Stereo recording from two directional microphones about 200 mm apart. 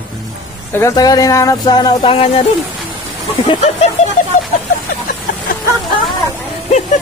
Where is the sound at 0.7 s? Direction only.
15° left (ahead or behind).